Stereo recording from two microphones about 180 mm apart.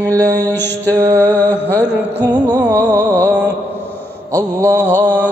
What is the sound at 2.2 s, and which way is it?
Music, 15° right (ahead or behind).